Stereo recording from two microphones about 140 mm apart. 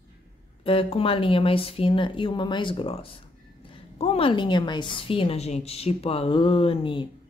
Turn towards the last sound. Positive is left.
turn(degrees=40)  # may be behind; listen again after turning